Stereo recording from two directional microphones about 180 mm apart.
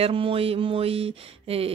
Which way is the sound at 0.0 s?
30° right (ahead or behind).